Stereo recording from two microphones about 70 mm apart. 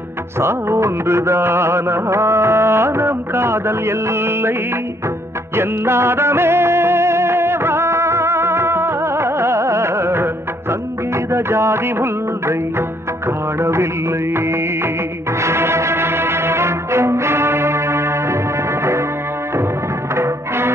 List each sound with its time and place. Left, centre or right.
0.4 s music: right
5.6 s music: right
15.4 s music: right
20.2 s music: right